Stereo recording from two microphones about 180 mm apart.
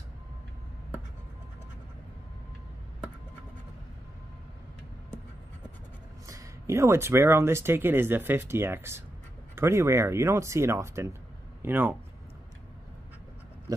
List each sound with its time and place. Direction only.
6.2 s speech: 15° right (ahead or behind)
13.7 s pig: 20° right (ahead or behind)